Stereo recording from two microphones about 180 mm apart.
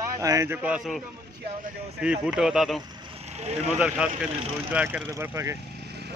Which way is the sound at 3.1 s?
35° right (ahead or behind).